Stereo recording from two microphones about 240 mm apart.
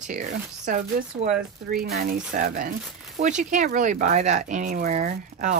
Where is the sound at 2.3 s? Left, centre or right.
Right.